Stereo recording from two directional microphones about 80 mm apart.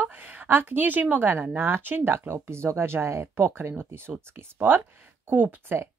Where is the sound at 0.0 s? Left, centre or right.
Right.